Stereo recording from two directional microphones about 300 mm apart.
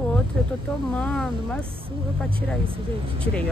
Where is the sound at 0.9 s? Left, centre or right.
Centre.